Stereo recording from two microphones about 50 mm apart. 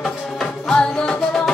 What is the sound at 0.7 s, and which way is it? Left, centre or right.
Music, centre.